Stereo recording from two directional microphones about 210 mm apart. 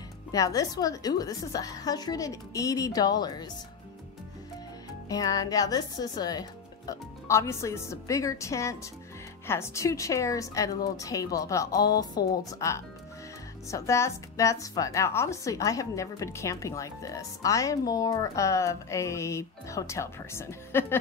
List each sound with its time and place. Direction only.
0.3 s a woman's voice: 15° left (ahead or behind)
5.0 s a woman's voice: 15° left (ahead or behind)